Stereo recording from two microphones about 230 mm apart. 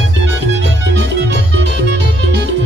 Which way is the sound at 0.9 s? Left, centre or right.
Right.